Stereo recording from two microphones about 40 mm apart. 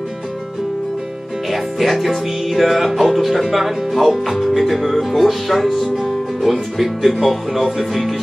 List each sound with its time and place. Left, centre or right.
1.5 s music: centre